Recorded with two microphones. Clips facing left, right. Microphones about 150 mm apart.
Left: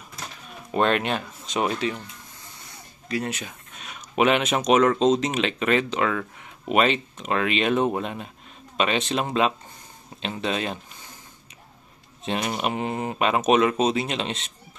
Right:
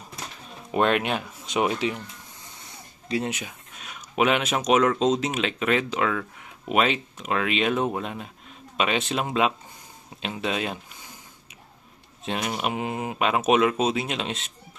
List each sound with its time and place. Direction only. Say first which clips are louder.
0.7 s speech: even; 5° right (ahead or behind)
3.1 s speech: right 1 dB; 20° right (ahead or behind)
3.7 s speech: left 2 dB; centre (ahead or behind)
12.3 s speech: left 2 dB; centre (ahead or behind)